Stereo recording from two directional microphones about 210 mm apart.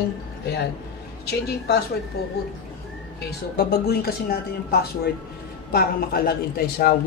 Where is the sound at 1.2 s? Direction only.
50° left (ahead or behind).